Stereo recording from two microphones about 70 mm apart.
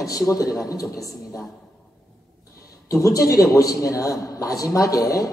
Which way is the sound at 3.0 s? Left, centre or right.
Left.